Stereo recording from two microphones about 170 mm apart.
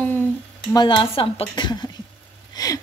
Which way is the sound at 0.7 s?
25° left (ahead or behind).